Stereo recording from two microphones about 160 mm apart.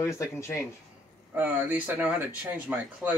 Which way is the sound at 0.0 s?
15° left (ahead or behind).